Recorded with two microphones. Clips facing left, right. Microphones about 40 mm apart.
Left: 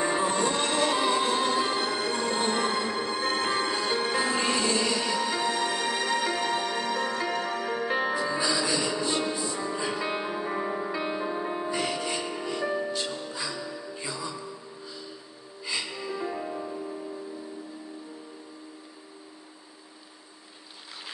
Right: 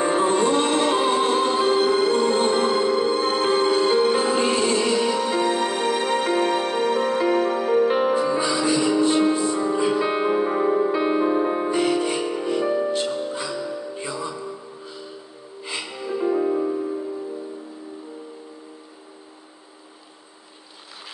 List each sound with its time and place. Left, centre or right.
0.0 s music: right
7.6 s music: right
8.1 s music: right
15.6 s music: right
16.5 s music: right